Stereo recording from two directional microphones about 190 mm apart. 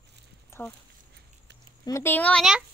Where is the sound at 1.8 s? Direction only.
15° left (ahead or behind).